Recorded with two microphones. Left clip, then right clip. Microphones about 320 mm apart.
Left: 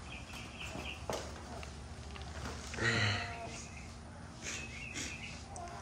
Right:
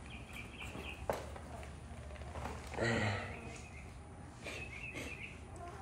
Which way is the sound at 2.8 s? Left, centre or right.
Centre.